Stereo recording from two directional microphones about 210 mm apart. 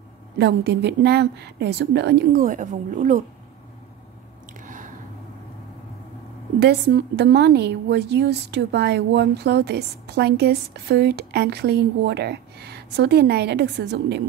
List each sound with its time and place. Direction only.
0.4 s a woman's voice: 55° right (ahead or behind)
2.4 s speech: 35° right (ahead or behind)
4.6 s a sound: 40° right (ahead or behind)
6.6 s a woman's voice: 50° right (ahead or behind)